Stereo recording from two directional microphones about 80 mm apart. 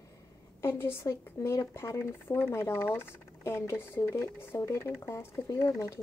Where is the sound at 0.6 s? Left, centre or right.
Left.